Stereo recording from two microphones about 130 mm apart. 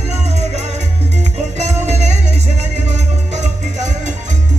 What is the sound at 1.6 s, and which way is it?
Music, 60° right (ahead or behind).